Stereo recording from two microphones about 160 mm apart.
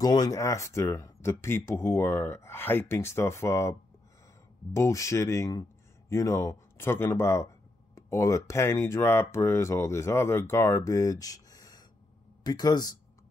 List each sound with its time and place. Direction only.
0.0 s speech: 25° left (ahead or behind)
4.7 s speech: 20° left (ahead or behind)